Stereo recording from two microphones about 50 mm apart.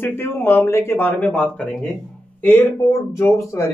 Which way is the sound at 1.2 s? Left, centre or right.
Left.